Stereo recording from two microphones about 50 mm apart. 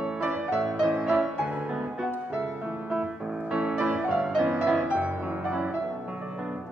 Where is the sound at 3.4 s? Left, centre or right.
Right.